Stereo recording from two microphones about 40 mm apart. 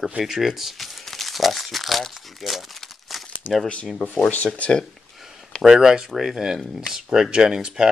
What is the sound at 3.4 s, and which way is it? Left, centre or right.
Speech, left.